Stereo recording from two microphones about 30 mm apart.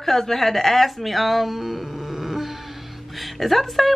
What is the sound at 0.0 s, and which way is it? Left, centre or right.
A woman's voice, centre.